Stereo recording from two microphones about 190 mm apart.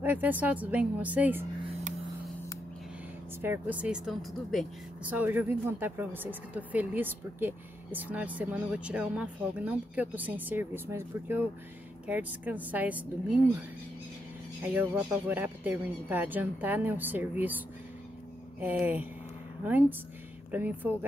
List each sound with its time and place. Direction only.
0.0 s speech: 10° right (ahead or behind)
1.7 s a sound: 35° right (ahead or behind)
3.3 s speech: 10° right (ahead or behind)
14.6 s speech: 10° right (ahead or behind)